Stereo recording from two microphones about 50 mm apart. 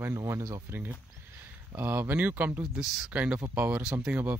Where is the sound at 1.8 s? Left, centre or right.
Right.